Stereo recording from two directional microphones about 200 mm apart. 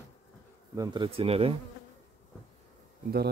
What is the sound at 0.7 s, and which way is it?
Speech, 25° right (ahead or behind).